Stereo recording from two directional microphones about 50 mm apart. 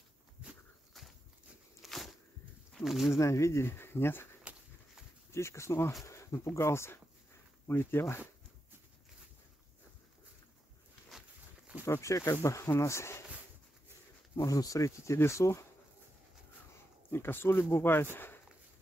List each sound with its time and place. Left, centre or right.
1.8 s a sound: centre
2.8 s speech: centre
3.2 s speech: left
3.7 s speech: left
5.3 s speech: left
7.6 s speech: left
11.8 s speech: left
12.8 s speech: left
14.4 s speech: left
17.1 s speech: left